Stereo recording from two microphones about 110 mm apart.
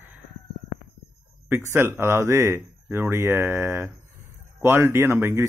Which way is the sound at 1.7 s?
25° right (ahead or behind).